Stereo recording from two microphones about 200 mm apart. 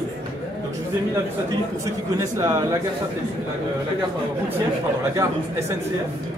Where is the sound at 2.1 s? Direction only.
15° right (ahead or behind).